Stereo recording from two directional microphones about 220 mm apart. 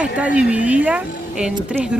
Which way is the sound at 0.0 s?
5° right (ahead or behind).